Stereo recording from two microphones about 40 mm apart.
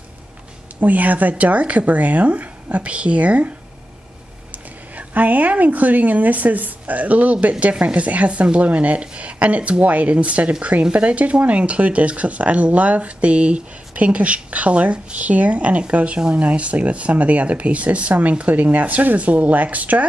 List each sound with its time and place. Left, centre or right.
0.7 s a woman's voice: right